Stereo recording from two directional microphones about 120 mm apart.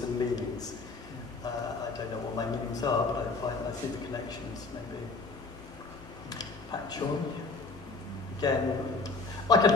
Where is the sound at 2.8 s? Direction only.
35° left (ahead or behind).